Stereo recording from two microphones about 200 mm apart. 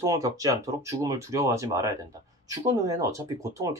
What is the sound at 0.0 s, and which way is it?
Speech, 15° right (ahead or behind).